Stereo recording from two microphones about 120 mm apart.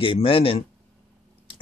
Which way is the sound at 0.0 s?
50° left (ahead or behind).